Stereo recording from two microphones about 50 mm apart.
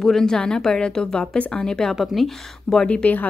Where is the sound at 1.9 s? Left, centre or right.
Centre.